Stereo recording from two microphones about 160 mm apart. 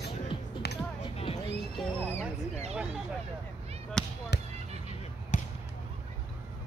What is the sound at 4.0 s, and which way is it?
Basketball bounce, 5° left (ahead or behind).